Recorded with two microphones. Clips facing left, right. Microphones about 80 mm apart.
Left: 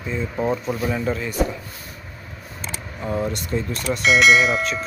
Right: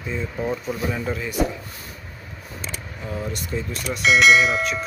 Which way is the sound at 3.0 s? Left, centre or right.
Left.